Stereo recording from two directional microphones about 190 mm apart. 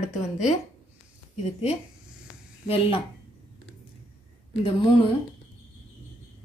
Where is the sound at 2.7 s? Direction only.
30° left (ahead or behind).